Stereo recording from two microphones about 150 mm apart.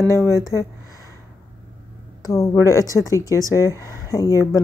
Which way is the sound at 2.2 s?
20° left (ahead or behind).